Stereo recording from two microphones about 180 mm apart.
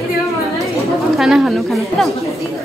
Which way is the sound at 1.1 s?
Centre (ahead or behind).